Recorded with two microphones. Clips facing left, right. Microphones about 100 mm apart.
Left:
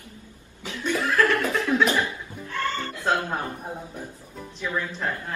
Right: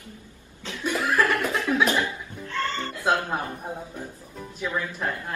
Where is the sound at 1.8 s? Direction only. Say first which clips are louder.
Even; 20° right (ahead or behind).